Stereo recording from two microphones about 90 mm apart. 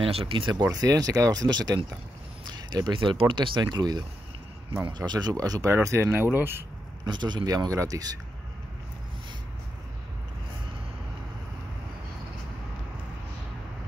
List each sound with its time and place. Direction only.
0.0 s speech: 85° right
0.5 s speech: 50° right (ahead or behind); by 6.6 s 25° right (ahead or behind)
7.1 s speech: 55° right (ahead or behind); by 8.0 s 40° right (ahead or behind)